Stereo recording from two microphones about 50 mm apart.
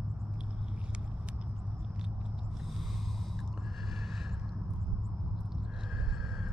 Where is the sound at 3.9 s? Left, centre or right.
Centre.